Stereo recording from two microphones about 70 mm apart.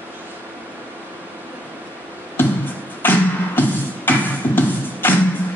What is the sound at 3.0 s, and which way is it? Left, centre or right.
Music, left.